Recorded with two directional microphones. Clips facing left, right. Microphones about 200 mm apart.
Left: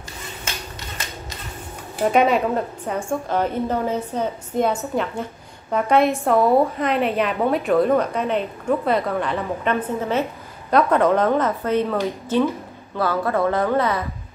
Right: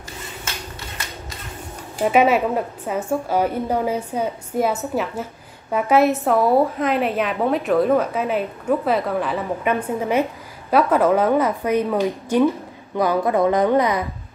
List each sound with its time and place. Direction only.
2.0 s a woman's voice: 5° right (ahead or behind)